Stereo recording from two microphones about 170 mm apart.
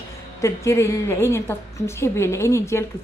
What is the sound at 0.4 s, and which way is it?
A woman's voice, 15° left (ahead or behind).